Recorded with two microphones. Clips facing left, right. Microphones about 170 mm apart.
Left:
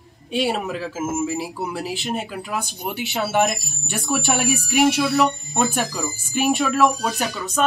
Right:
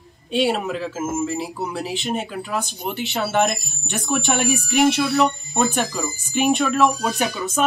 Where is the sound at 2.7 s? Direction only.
15° left (ahead or behind).